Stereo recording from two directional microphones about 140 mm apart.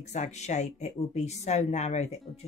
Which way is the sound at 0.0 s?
55° left (ahead or behind).